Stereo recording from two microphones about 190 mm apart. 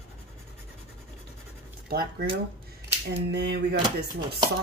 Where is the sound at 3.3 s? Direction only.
60° right (ahead or behind).